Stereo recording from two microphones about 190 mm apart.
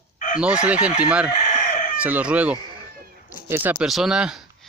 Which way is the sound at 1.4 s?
35° left (ahead or behind).